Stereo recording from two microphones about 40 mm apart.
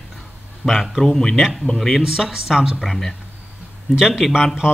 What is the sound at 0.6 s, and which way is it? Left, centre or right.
Speech, left.